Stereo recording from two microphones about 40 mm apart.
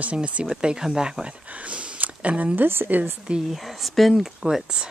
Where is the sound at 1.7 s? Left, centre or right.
Right.